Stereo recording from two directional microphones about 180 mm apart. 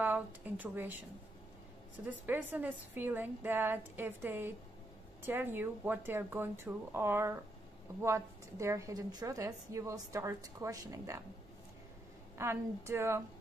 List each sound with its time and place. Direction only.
0.0 s a woman's voice: 10° right (ahead or behind)
2.0 s a woman's voice: 10° right (ahead or behind)
12.4 s a woman's voice: 15° right (ahead or behind)